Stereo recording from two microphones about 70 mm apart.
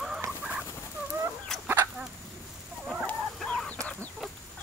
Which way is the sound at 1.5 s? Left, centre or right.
Centre.